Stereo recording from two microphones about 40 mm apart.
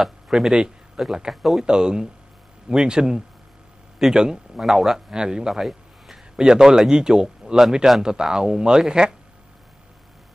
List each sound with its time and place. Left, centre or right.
0.0 s speech: centre
1.6 s speech: centre
5.1 s speech: centre
6.3 s speech: centre